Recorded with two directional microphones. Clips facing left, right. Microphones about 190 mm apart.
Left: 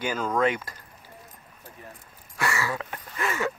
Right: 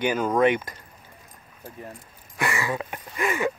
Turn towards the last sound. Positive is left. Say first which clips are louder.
# right 3 dB
turn(degrees=-15)  # may be behind; listen again after turning